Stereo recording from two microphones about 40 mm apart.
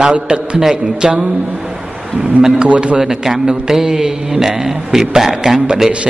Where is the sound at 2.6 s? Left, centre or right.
Right.